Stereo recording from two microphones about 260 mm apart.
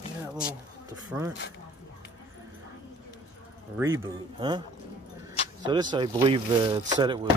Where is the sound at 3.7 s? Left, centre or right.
Centre.